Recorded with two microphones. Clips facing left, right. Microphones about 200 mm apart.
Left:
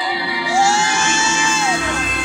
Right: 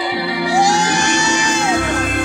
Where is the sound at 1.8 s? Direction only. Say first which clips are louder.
Right 5 dB; 55° right (ahead or behind).